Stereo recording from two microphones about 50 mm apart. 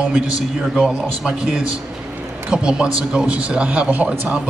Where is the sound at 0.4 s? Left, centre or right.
Centre.